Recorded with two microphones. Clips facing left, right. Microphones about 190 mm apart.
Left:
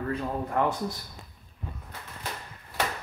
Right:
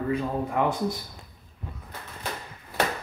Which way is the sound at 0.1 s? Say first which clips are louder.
Right 2 dB; 10° right (ahead or behind).